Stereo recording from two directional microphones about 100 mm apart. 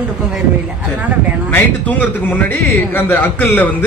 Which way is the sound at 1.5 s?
20° left (ahead or behind).